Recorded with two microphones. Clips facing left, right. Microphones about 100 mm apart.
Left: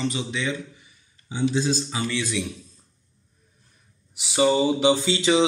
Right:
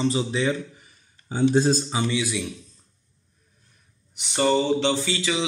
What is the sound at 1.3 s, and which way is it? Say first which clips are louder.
Speech: right 4 dB; 45° right (ahead or behind).